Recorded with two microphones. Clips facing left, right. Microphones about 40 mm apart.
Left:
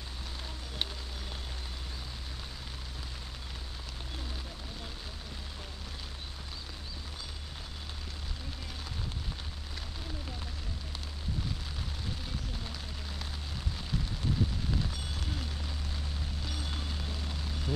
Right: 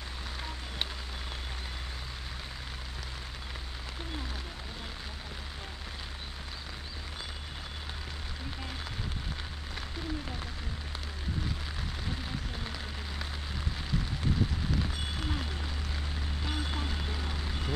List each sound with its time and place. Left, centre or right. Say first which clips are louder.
14.8 s rain on surface: right 3 dB; right
16.4 s vehicle: right 6 dB; right